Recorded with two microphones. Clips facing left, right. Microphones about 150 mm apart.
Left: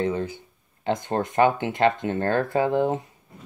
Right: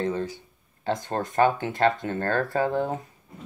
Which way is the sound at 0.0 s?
15° left (ahead or behind).